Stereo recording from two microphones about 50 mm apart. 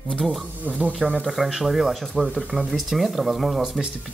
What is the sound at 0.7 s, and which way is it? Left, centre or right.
Speech, right.